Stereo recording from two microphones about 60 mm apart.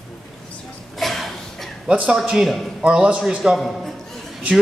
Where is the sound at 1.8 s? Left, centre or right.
Centre.